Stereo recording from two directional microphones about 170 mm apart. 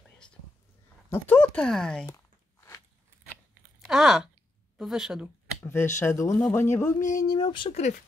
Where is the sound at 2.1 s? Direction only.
15° left (ahead or behind).